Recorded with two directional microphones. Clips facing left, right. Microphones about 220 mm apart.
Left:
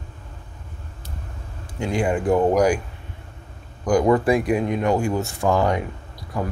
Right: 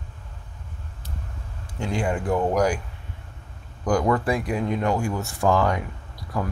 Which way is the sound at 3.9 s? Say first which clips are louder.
Left 5 dB; 15° left (ahead or behind).